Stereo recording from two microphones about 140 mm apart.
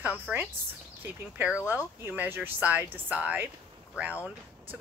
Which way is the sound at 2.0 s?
15° right (ahead or behind).